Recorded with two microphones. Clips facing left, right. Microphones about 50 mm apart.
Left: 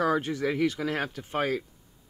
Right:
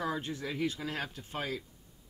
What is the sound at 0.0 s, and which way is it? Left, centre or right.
Speech, left.